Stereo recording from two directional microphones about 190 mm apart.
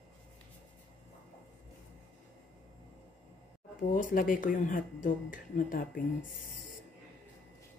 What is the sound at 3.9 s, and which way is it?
Speech, 45° left (ahead or behind).